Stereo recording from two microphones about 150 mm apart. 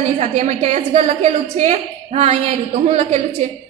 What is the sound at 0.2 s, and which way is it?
A woman's voice, 50° right (ahead or behind).